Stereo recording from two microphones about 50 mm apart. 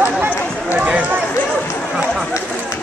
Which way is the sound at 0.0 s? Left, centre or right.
Right.